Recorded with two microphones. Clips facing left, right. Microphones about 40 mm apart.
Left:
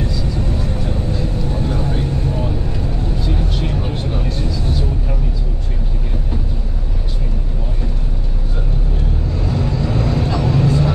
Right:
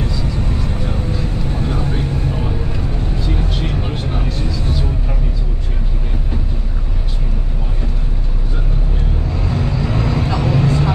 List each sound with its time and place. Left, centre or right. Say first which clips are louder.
0.7 s vehicle: even; centre
3.2 s vehicle: right 1 dB; centre
9.5 s vehicle: even; centre